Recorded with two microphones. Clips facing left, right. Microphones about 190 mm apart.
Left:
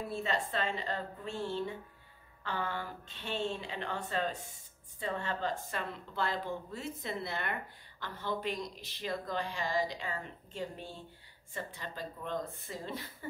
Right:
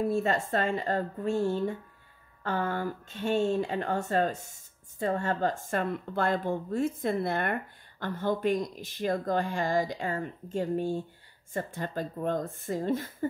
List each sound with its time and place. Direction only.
0.0 s speech: 45° right (ahead or behind)